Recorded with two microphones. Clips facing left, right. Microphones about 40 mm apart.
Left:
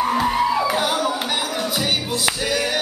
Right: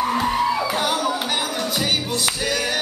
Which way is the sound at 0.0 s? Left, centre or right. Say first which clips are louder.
Left 1 dB; centre.